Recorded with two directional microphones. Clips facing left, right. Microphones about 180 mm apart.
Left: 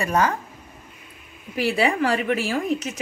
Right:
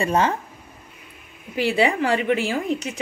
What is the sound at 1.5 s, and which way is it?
Speech, 25° right (ahead or behind).